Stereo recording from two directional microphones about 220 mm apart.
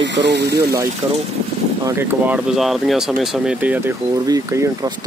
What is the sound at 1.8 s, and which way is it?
Speech, 10° right (ahead or behind).